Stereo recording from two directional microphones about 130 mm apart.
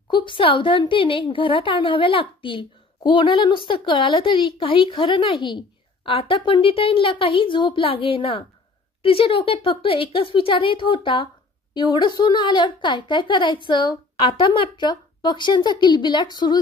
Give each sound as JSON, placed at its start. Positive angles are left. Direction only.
{"t": 0.1, "sound": "a woman's voice", "side_deg": 40}